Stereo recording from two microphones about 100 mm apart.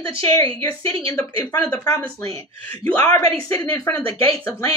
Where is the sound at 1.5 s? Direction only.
25° left (ahead or behind).